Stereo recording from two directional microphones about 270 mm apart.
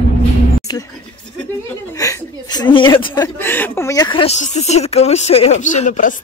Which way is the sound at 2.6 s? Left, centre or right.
Centre.